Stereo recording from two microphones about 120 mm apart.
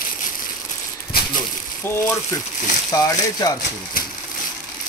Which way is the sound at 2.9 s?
30° left (ahead or behind).